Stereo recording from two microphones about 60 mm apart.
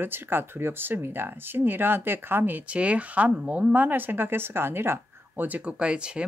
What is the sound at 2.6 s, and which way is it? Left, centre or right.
Speech, right.